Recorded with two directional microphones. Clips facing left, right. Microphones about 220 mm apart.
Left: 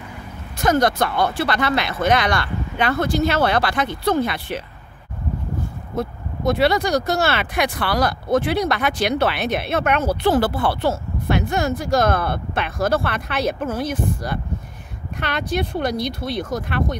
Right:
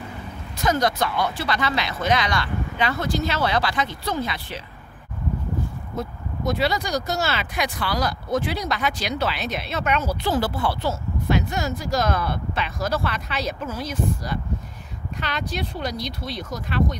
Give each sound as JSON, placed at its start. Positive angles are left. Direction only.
{"t": 0.6, "sound": "speech", "side_deg": 55}
{"t": 5.9, "sound": "speech", "side_deg": 60}